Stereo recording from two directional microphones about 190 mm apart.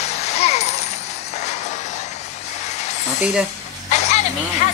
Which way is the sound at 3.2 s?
5° right (ahead or behind).